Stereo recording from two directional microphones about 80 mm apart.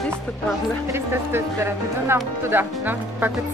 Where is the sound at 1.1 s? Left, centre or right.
Right.